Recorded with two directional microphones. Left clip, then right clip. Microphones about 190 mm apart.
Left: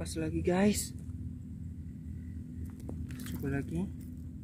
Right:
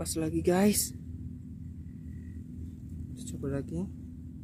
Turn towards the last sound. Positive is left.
turn(degrees=-15)  # may be behind; listen again after turning